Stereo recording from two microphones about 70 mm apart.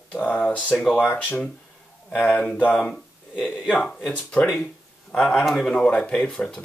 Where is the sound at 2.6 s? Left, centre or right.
Centre.